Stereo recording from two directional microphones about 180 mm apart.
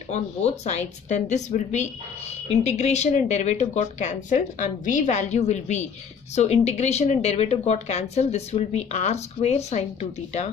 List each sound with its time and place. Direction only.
0.1 s speech: 40° left (ahead or behind)